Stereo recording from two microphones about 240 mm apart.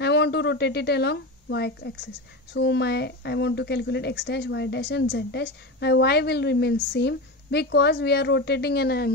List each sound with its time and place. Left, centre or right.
0.0 s a woman's voice: left